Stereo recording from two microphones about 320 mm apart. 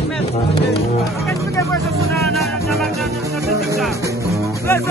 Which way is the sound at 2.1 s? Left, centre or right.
Centre.